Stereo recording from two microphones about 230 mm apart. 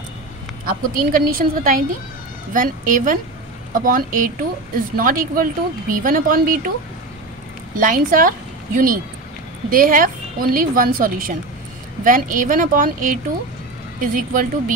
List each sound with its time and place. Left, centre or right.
0.7 s speech: right
7.7 s a woman's voice: right